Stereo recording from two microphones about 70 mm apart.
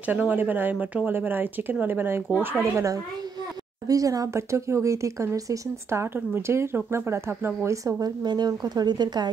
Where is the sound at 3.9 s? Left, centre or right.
Right.